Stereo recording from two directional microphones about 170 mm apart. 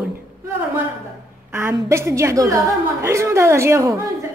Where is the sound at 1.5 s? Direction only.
15° right (ahead or behind).